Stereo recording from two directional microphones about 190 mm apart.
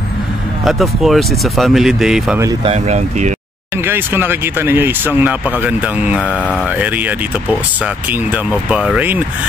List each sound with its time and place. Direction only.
0.7 s speech: centre (ahead or behind)
2.6 s speech: 35° right (ahead or behind)
3.8 s speech: 10° right (ahead or behind)